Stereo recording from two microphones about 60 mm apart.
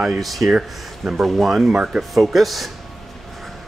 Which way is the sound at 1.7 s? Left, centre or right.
Centre.